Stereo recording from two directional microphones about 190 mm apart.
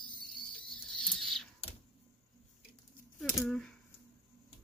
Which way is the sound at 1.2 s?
Centre (ahead or behind).